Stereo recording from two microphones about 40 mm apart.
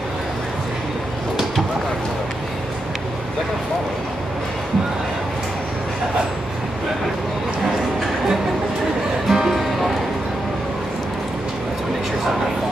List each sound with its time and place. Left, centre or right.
9.3 s music: centre